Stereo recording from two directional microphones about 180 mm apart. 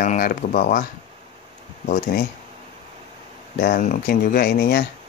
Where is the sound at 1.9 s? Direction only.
50° left (ahead or behind).